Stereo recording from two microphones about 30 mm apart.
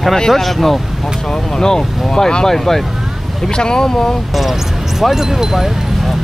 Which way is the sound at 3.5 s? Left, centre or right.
Left.